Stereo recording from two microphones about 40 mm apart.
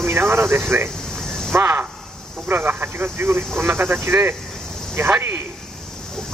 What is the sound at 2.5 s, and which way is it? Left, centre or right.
Speech, right.